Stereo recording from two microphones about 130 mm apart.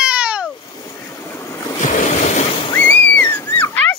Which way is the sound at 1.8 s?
70° left (ahead or behind).